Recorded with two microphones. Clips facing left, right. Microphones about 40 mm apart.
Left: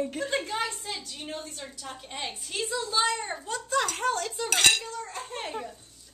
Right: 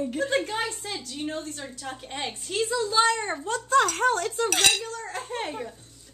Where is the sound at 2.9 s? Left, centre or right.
Right.